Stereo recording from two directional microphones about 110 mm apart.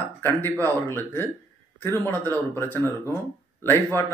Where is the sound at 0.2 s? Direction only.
20° left (ahead or behind).